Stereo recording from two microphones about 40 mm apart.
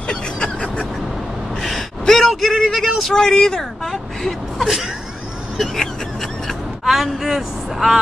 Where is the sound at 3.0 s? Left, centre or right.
Centre.